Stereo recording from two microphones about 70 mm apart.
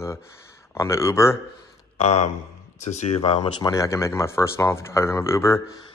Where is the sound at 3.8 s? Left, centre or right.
Left.